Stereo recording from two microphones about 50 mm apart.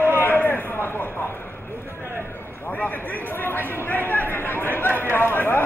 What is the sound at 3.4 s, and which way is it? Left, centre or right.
Speech, left.